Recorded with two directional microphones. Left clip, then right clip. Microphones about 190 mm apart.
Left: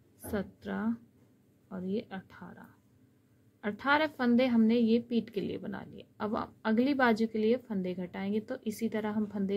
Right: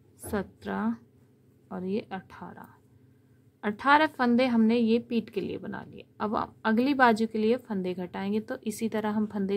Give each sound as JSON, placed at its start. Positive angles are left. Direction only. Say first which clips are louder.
{"t": 0.2, "sound": "a woman's voice", "louder": "right 4 dB", "side_deg": -20}